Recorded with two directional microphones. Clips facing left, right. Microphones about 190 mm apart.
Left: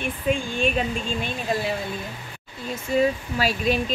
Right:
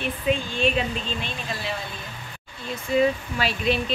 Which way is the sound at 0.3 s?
45° left (ahead or behind).